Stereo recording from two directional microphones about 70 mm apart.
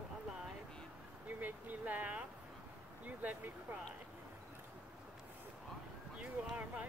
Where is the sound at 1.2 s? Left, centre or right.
Right.